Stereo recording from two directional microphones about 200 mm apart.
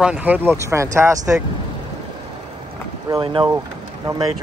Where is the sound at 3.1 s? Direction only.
25° right (ahead or behind).